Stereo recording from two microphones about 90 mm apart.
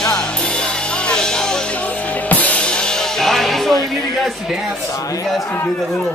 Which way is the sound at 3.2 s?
5° left (ahead or behind).